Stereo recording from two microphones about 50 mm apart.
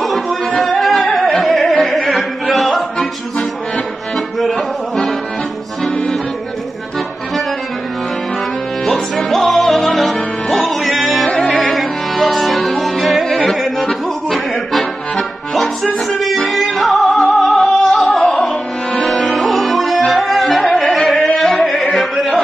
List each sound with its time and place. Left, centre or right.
0.0 s yodeling: centre
0.7 s music: centre
3.0 s music: centre
4.4 s music: centre
8.8 s music: centre
13.5 s accordion: centre
16.7 s music: centre
19.4 s music: centre